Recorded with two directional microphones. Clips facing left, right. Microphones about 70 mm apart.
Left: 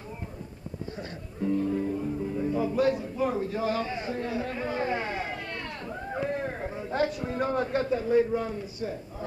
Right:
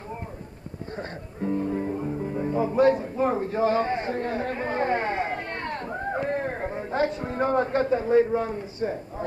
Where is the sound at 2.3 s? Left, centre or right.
Right.